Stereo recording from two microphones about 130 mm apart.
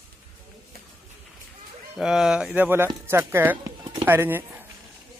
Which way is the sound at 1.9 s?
5° right (ahead or behind).